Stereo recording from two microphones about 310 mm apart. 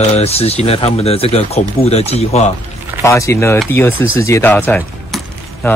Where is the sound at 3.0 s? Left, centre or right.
Centre.